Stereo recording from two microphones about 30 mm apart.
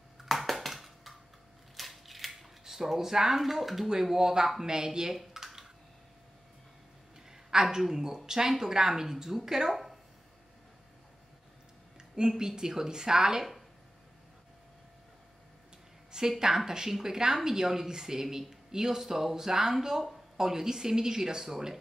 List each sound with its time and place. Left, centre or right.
0.2 s a sound: centre
1.8 s scissors: centre
4.0 s speech: centre
5.1 s typing: centre
7.2 s a sound: centre
7.8 s speech: centre
9.7 s speech: centre
12.2 s speech: centre
16.3 s speech: centre